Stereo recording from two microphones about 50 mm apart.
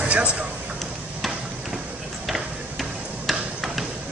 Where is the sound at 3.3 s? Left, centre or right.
Centre.